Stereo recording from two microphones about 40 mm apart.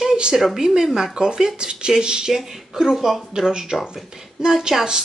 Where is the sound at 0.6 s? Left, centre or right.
Centre.